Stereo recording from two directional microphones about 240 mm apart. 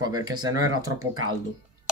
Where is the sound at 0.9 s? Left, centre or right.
Right.